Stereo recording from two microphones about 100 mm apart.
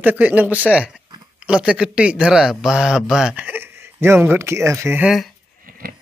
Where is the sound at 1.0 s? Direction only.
45° right (ahead or behind).